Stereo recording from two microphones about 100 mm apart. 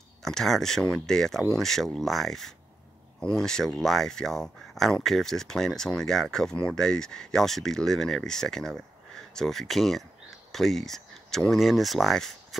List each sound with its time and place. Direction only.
0.2 s speech: 5° left (ahead or behind)